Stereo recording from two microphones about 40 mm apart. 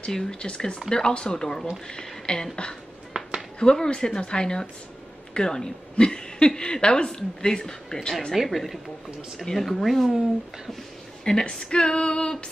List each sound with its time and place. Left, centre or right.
0.0 s speech: left
3.1 s a sound: centre
3.7 s speech: centre
8.5 s speech: centre
11.2 s speech: centre